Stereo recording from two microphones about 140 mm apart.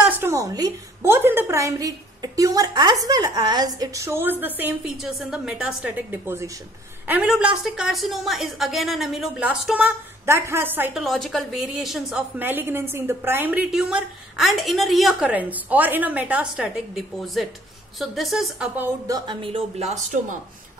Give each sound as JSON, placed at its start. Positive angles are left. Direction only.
{"t": 0.1, "sound": "a woman's voice", "side_deg": -20}
{"t": 7.1, "sound": "a woman's voice", "side_deg": -5}
{"t": 9.8, "sound": "a woman's voice", "side_deg": -15}
{"t": 11.0, "sound": "a woman's voice", "side_deg": 0}
{"t": 12.4, "sound": "a woman's voice", "side_deg": -15}
{"t": 15.2, "sound": "a woman's voice", "side_deg": -10}
{"t": 19.0, "sound": "speech", "side_deg": -25}
{"t": 19.4, "sound": "speech", "side_deg": -45}